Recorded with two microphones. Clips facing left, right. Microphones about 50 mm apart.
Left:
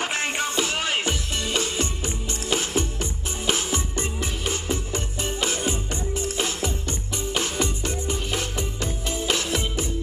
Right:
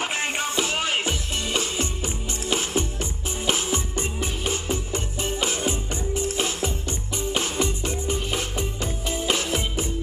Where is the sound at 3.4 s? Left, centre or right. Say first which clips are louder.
Even; right.